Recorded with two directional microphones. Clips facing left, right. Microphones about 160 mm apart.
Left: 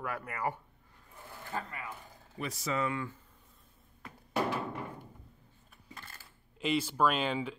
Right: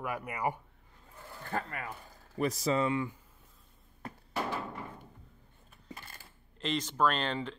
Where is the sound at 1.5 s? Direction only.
60° right (ahead or behind).